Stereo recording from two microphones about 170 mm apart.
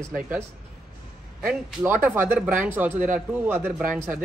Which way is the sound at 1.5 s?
10° right (ahead or behind).